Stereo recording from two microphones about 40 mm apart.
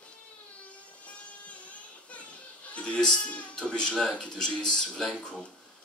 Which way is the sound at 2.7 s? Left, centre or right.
Left.